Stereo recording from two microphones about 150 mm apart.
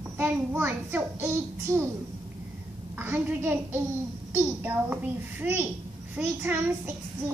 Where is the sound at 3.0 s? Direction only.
15° right (ahead or behind).